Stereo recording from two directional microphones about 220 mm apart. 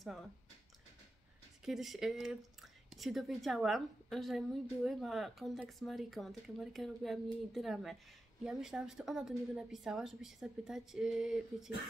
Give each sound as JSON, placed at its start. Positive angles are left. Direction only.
{"t": 1.6, "sound": "speech", "side_deg": 0}